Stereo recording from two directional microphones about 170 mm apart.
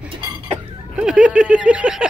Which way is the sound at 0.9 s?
5° right (ahead or behind).